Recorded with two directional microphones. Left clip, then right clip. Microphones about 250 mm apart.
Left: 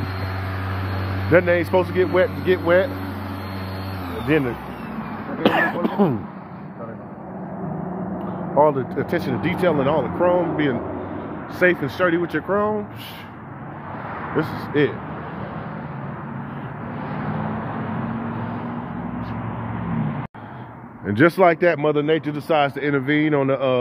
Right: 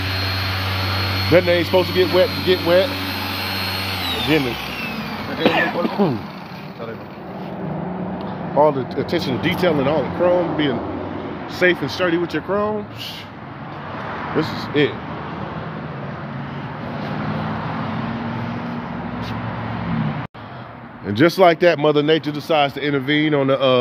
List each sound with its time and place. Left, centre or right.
1.3 s speech: centre
4.3 s speech: centre
8.5 s speech: centre
14.4 s speech: centre
21.1 s speech: centre
22.3 s speech: centre; by 23.8 s right